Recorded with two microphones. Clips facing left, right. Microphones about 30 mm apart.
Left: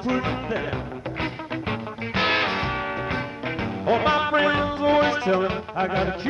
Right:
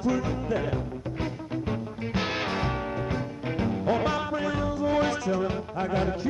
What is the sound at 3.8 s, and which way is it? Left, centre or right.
Music, left.